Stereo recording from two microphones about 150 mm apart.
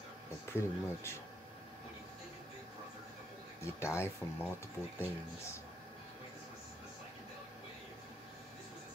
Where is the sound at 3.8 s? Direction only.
15° left (ahead or behind).